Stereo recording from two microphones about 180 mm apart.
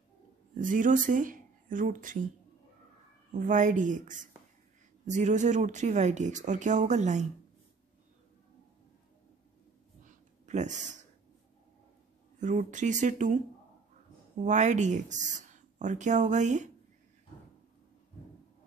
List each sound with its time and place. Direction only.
0.6 s speech: 45° right (ahead or behind)
3.3 s speech: 45° right (ahead or behind)
10.4 s speech: 40° right (ahead or behind)
12.4 s speech: 45° right (ahead or behind)
14.4 s speech: 40° right (ahead or behind)